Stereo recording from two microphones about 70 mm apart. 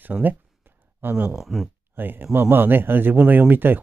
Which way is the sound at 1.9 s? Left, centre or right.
Right.